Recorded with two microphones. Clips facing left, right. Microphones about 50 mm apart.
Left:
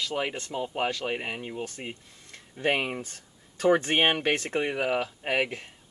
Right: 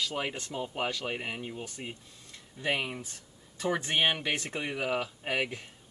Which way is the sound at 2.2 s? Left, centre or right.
Left.